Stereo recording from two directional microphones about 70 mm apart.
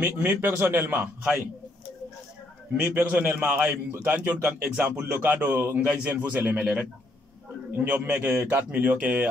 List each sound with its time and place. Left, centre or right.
0.0 s a man's voice: right
2.9 s a man's voice: right
5.0 s a man's voice: right